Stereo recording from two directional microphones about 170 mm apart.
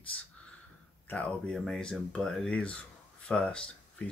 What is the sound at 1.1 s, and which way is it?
Speech, 5° left (ahead or behind).